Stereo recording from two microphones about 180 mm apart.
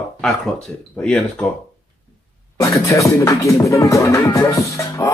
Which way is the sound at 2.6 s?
15° left (ahead or behind).